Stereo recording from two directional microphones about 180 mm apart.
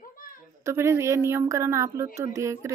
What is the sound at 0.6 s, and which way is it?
Speech, 15° right (ahead or behind).